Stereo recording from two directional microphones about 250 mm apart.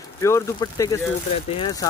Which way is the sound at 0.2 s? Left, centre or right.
Centre.